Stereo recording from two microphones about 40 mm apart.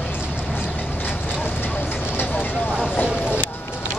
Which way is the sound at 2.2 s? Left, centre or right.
Left.